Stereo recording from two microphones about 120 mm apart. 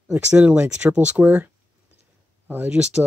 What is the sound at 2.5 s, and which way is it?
Speech, 15° right (ahead or behind).